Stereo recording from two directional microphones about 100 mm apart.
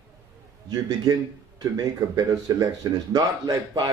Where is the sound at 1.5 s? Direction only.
40° right (ahead or behind).